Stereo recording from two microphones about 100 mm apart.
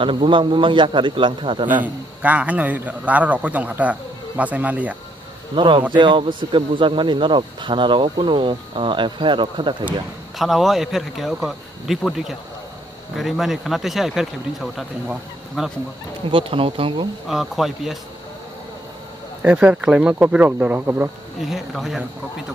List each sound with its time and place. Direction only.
0.0 s speech: 60° right (ahead or behind)
1.8 s a man's voice: 15° right (ahead or behind)
5.6 s speech: 55° right (ahead or behind)
10.3 s speech: centre (ahead or behind)
16.3 s speech: 60° right (ahead or behind)
17.3 s speech: centre (ahead or behind)
19.4 s a man's voice: 10° right (ahead or behind)
21.4 s speech: centre (ahead or behind)